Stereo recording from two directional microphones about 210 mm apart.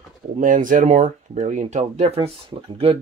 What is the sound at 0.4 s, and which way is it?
Speech, 40° right (ahead or behind).